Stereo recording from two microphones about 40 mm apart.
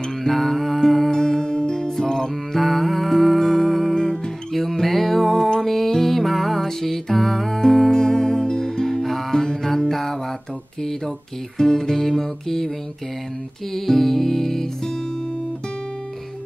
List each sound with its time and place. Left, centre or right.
0.2 s music: centre
1.2 s music: centre
2.5 s music: centre
11.5 s music: centre
13.7 s music: centre